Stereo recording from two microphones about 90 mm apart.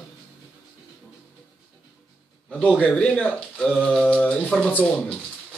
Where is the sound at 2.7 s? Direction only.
15° left (ahead or behind).